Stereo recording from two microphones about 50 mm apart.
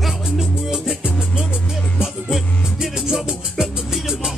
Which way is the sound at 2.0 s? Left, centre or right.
Centre.